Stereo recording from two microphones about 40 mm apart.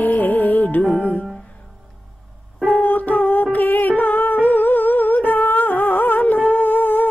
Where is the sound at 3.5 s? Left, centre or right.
Left.